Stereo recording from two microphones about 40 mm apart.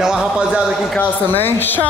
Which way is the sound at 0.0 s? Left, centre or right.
Centre.